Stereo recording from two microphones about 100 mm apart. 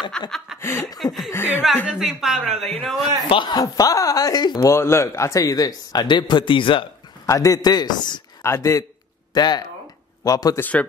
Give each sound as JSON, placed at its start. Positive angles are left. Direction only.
{"t": 0.2, "sound": "speech", "side_deg": 5}
{"t": 0.6, "sound": "a sound", "side_deg": 25}
{"t": 0.9, "sound": "speech", "side_deg": 0}
{"t": 1.3, "sound": "speech", "side_deg": 20}
{"t": 1.9, "sound": "speech", "side_deg": -5}
{"t": 3.3, "sound": "speech", "side_deg": 50}
{"t": 7.2, "sound": "speech", "side_deg": 35}
{"t": 8.4, "sound": "speech", "side_deg": 30}
{"t": 9.3, "sound": "speech", "side_deg": 45}
{"t": 10.6, "sound": "speech", "side_deg": 15}